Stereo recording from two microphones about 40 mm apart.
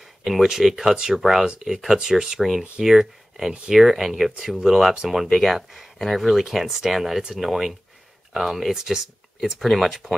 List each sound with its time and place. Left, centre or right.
0.2 s speech: centre
0.5 s speech: centre
2.0 s speech: centre
5.3 s speech: centre
6.1 s speech: centre
9.6 s speech: centre